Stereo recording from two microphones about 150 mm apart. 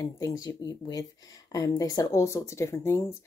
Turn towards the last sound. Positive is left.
turn(degrees=20)  # may be behind; listen again after turning